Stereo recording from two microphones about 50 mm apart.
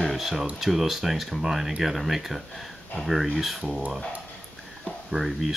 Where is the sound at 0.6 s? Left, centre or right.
Centre.